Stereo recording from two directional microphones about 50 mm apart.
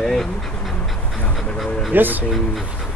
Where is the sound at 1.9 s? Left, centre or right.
Right.